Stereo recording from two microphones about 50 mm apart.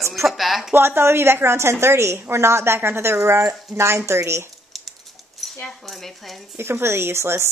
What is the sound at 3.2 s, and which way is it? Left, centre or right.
A woman's voice, right.